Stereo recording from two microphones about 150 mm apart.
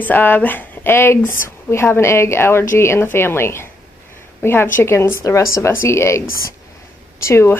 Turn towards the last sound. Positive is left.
turn(degrees=15)  # may be behind; listen again after turning